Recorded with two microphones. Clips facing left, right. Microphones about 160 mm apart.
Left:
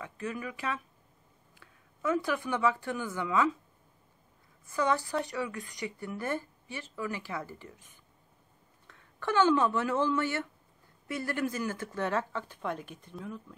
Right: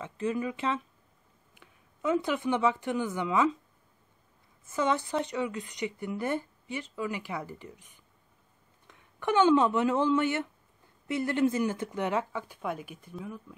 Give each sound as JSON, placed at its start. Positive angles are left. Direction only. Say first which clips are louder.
{"t": 0.0, "sound": "speech", "louder": "right 6 dB", "side_deg": -25}
{"t": 4.6, "sound": "speech", "louder": "right 1 dB", "side_deg": -20}